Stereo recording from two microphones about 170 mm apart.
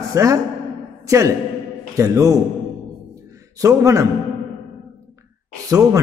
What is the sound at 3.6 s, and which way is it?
Speech, 20° right (ahead or behind).